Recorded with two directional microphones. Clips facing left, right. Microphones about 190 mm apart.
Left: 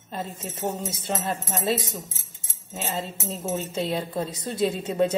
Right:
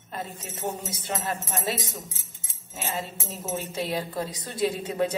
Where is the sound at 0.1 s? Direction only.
25° left (ahead or behind).